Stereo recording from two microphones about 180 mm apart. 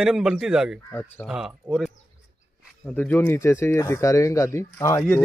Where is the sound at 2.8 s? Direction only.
10° left (ahead or behind).